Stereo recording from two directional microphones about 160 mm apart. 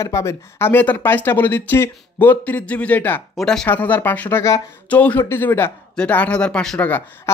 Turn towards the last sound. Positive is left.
turn(degrees=10)  # may be behind; listen again after turning